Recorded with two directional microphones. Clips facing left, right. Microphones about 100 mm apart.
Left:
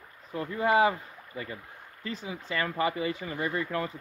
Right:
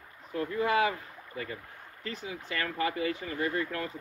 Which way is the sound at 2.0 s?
25° left (ahead or behind).